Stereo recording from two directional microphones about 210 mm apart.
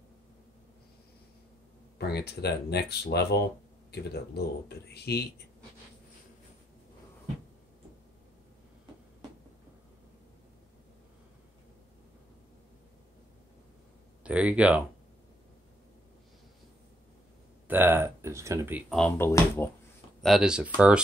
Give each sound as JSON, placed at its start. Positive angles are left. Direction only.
{"t": 2.0, "sound": "speech", "side_deg": 50}
{"t": 14.2, "sound": "speech", "side_deg": -5}
{"t": 17.6, "sound": "speech", "side_deg": -10}
{"t": 18.9, "sound": "speech", "side_deg": 10}
{"t": 20.2, "sound": "speech", "side_deg": 0}